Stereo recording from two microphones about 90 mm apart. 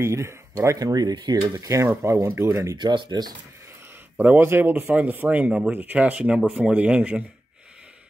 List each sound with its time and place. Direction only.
0.0 s speech: 30° right (ahead or behind); by 1.4 s 50° right (ahead or behind)
1.6 s speech: 35° right (ahead or behind)
2.8 s speech: 60° right (ahead or behind)
4.2 s speech: 20° right (ahead or behind)